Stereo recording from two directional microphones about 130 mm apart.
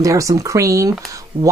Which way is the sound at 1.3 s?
45° right (ahead or behind).